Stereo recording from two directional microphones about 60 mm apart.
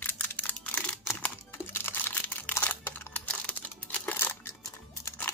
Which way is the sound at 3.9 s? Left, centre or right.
Left.